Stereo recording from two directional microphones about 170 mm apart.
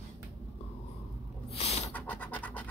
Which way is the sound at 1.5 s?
35° left (ahead or behind).